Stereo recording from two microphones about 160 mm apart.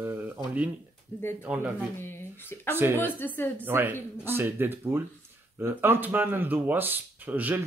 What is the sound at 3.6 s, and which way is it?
Speech, 15° right (ahead or behind).